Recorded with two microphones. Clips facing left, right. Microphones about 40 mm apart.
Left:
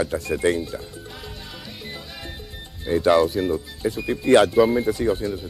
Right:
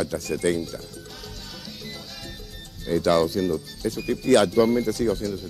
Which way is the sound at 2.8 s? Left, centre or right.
Left.